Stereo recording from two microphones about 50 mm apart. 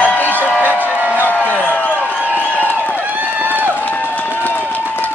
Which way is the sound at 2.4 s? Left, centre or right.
Left.